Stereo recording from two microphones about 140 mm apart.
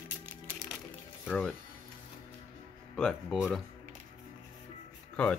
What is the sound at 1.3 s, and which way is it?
Speech, 5° left (ahead or behind).